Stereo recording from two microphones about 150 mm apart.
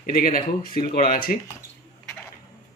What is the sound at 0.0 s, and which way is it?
Speech, 70° left (ahead or behind).